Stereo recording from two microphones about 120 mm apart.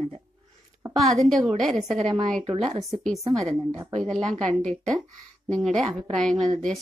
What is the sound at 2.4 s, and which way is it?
Speech, 55° right (ahead or behind).